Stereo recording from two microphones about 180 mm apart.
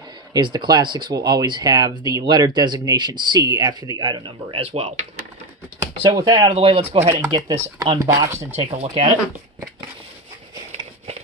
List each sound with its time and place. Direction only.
0.3 s speech: 25° right (ahead or behind)
6.0 s speech: 20° right (ahead or behind)
6.5 s speech: 35° right (ahead or behind); by 8.5 s 15° right (ahead or behind)
8.5 s speech: 35° right (ahead or behind)